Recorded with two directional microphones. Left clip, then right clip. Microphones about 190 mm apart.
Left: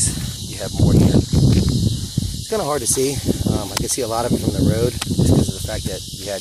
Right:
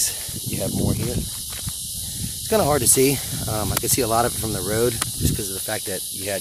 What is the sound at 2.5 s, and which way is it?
Speech, 25° right (ahead or behind).